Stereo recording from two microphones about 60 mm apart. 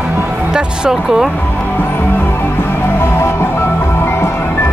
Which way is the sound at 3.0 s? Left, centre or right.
Left.